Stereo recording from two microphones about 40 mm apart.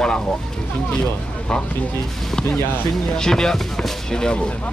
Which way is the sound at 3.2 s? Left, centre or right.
Centre.